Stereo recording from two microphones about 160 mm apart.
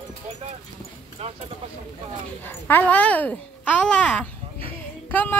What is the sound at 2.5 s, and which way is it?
Speech, 10° left (ahead or behind).